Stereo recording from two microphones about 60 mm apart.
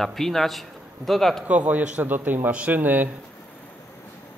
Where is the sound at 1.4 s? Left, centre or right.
Right.